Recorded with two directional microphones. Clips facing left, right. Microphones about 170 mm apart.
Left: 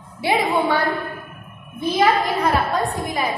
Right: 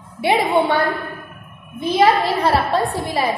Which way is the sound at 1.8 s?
30° right (ahead or behind).